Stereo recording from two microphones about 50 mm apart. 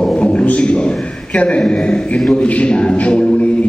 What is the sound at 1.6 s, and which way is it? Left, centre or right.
Speech, centre.